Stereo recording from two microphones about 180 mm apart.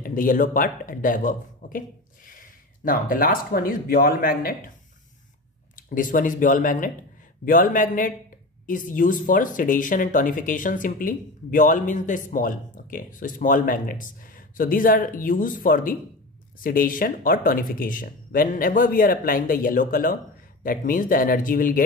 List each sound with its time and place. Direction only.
0.0 s speech: 50° left (ahead or behind)
5.8 s speech: 50° left (ahead or behind)